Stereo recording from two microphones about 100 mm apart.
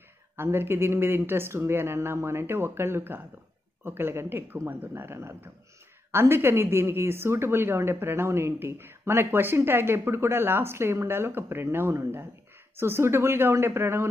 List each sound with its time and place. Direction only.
0.4 s a woman's voice: 25° right (ahead or behind)